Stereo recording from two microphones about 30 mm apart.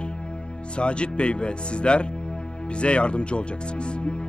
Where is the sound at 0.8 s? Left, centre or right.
Left.